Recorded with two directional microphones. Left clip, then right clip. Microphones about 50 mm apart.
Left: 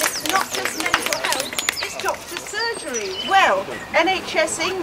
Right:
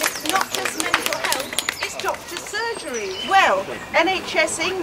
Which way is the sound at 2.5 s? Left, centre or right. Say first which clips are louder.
Left 1 dB; centre.